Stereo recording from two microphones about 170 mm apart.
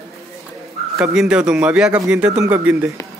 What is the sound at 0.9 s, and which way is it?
A man's voice, 5° right (ahead or behind).